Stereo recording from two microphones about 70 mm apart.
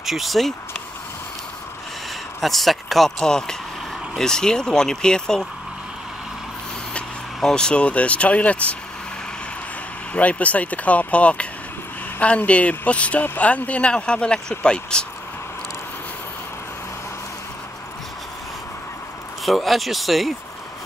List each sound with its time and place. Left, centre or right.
0.0 s speech: centre
2.4 s speech: centre
7.3 s speech: centre
10.1 s speech: centre
19.4 s speech: centre